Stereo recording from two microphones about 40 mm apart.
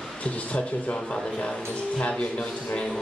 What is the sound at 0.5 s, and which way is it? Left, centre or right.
Speech, left.